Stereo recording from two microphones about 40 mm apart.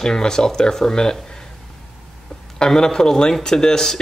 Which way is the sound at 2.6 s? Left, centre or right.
Centre.